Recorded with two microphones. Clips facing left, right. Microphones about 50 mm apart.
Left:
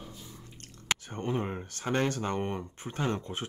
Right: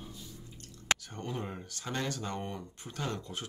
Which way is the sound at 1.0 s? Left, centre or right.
Left.